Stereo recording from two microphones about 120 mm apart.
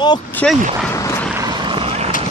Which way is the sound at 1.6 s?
50° right (ahead or behind).